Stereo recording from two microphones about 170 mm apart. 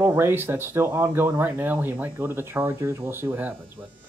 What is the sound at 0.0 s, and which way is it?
Speech, 15° right (ahead or behind).